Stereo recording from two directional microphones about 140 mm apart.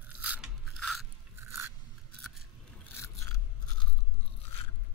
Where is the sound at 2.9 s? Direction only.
20° left (ahead or behind).